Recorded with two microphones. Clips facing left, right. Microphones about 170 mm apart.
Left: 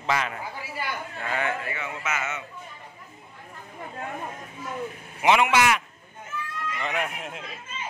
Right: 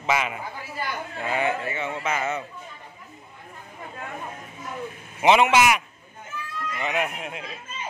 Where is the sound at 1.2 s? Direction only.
20° right (ahead or behind).